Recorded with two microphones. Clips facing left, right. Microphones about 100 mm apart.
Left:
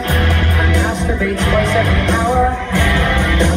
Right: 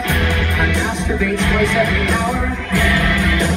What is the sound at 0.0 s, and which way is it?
Music, 40° left (ahead or behind).